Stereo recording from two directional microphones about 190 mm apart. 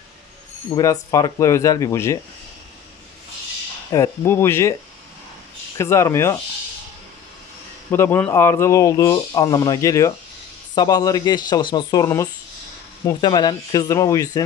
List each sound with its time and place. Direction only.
0.7 s speech: 20° left (ahead or behind)
3.9 s speech: 15° left (ahead or behind)
5.8 s speech: 15° left (ahead or behind)
7.9 s speech: 10° left (ahead or behind)